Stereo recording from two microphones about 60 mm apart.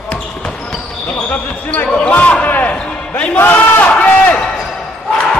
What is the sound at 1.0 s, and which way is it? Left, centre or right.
Basketball bounce, left.